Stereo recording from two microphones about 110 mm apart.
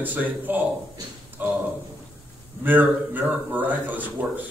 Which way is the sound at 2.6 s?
15° right (ahead or behind).